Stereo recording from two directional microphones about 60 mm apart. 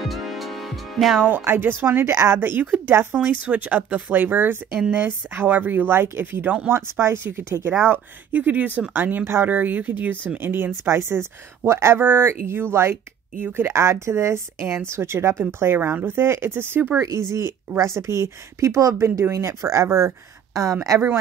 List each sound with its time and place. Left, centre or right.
0.0 s music: centre
1.2 s speech: right
7.8 s speech: right
17.7 s speech: right
18.9 s speech: right